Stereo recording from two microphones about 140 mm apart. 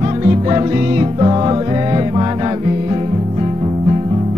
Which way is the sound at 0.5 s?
30° right (ahead or behind).